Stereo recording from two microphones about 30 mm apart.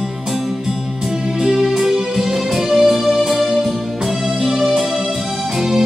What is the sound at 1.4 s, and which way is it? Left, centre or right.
Music, centre.